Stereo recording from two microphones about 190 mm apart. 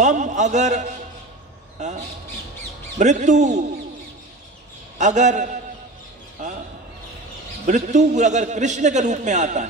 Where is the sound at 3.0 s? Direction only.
40° right (ahead or behind).